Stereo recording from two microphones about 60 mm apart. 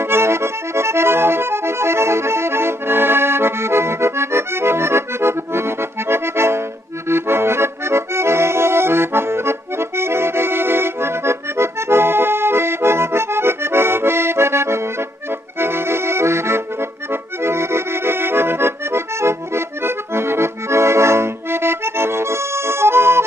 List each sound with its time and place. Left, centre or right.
0.0 s accordion: right